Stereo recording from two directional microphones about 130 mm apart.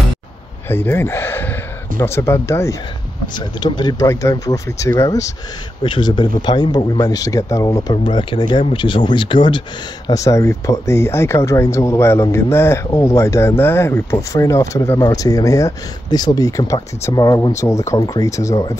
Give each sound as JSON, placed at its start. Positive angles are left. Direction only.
{"t": 0.7, "sound": "speech", "side_deg": 15}
{"t": 3.3, "sound": "speech", "side_deg": 35}
{"t": 5.8, "sound": "speech", "side_deg": 35}
{"t": 10.0, "sound": "speech", "side_deg": 25}